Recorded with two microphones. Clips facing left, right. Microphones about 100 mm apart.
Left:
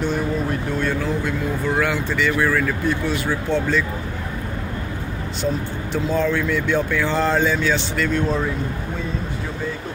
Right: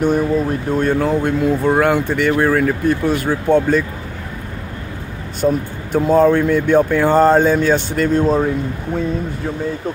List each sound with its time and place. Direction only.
0.0 s speech: 40° right (ahead or behind)
2.3 s speech: 40° right (ahead or behind)
5.4 s speech: 50° right (ahead or behind)